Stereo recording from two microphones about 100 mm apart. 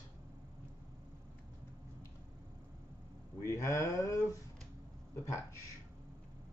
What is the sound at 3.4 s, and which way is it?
Speech, 30° left (ahead or behind).